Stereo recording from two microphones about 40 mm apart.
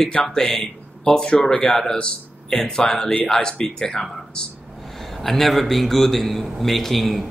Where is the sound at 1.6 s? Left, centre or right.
Centre.